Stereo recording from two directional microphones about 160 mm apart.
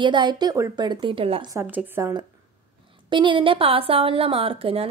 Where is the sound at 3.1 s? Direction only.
30° right (ahead or behind).